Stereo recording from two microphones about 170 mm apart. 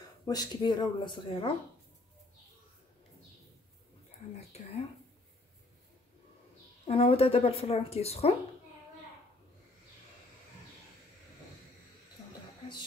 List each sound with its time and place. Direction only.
0.3 s speech: 25° left (ahead or behind)
4.5 s whispering: 40° left (ahead or behind)
6.9 s a woman's voice: 35° left (ahead or behind)